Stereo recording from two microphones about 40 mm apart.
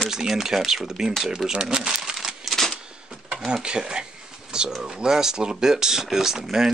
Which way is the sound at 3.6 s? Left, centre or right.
Right.